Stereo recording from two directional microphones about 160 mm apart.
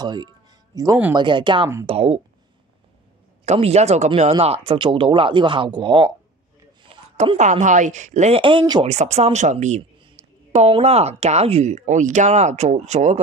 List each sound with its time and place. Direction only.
0.0 s speech: 25° right (ahead or behind)
3.4 s speech: 40° right (ahead or behind)
7.3 s speech: 50° right (ahead or behind)
8.4 s speech: 30° right (ahead or behind)
8.8 s speech: 45° right (ahead or behind)
10.2 s a sound: 45° right (ahead or behind)
10.7 s speech: 40° right (ahead or behind)